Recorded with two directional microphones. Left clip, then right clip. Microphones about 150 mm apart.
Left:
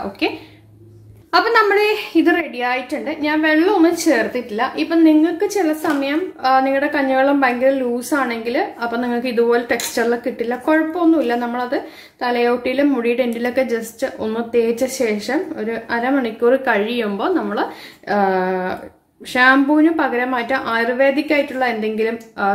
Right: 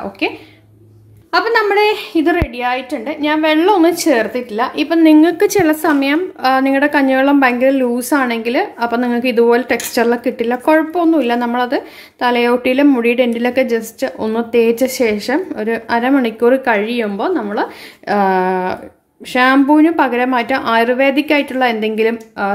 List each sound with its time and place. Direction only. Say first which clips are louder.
1.3 s a woman's voice: right 1 dB; 20° right (ahead or behind)
4.8 s a woman's voice: right 3 dB; 45° right (ahead or behind)
5.2 s a woman's voice: right 6 dB; 65° right (ahead or behind); by 22.5 s 45° right (ahead or behind)